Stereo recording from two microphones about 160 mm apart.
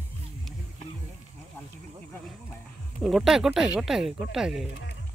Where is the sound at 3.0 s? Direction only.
Centre (ahead or behind).